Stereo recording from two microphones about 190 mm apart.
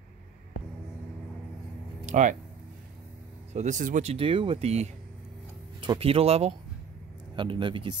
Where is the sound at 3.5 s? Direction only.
40° right (ahead or behind).